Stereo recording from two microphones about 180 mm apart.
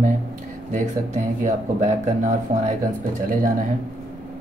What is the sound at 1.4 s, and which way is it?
Speech, 40° right (ahead or behind).